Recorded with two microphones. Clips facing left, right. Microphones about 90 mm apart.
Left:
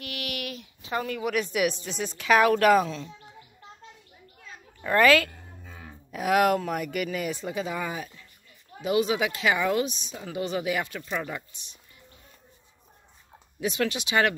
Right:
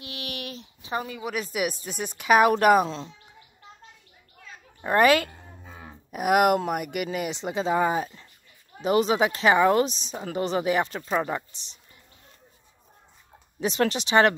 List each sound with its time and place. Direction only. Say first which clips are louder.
0.0 s a sound: left 2 dB; 30° right (ahead or behind)
1.2 s a woman's voice: left 5 dB; 5° right (ahead or behind)
4.8 s speech: right 1 dB; 20° right (ahead or behind)
7.2 s speech: right 4 dB; 25° right (ahead or behind)
13.6 s speech: right 3 dB; 30° right (ahead or behind)